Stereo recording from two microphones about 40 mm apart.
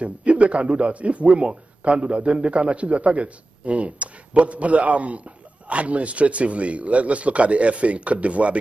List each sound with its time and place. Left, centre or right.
0.0 s a man's voice: right